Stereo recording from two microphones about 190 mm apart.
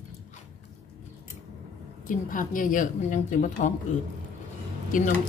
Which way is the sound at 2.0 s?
45° left (ahead or behind).